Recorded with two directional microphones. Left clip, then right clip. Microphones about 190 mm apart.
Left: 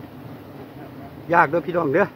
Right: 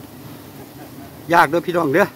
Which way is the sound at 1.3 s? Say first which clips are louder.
Right 3 dB; 45° right (ahead or behind).